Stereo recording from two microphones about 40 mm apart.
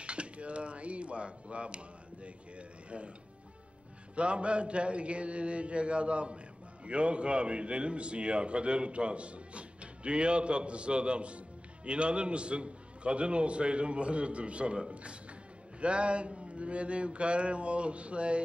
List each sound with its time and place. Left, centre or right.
0.0 s a sound: right
4.1 s mantra: right
15.8 s mantra: right